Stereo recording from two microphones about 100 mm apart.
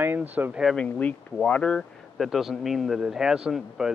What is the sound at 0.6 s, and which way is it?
Speech, 10° left (ahead or behind).